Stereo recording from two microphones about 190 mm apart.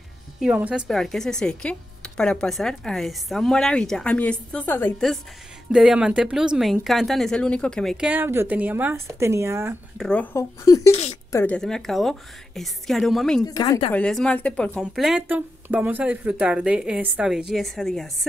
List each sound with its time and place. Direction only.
0.4 s speech: 5° right (ahead or behind)
8.1 s speech: 10° right (ahead or behind)
9.9 s speech: 5° left (ahead or behind)
10.9 s speech: 30° left (ahead or behind)
11.3 s speech: 5° left (ahead or behind)
13.5 s speech: 20° left (ahead or behind)
13.9 s speech: 5° left (ahead or behind)